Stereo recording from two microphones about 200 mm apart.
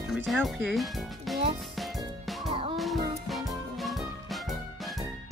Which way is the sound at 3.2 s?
Centre (ahead or behind).